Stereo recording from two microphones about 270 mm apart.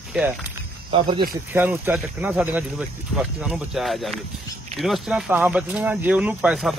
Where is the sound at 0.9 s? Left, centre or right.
Centre.